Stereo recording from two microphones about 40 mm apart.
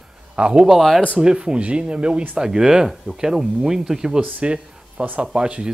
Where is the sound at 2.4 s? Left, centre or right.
Centre.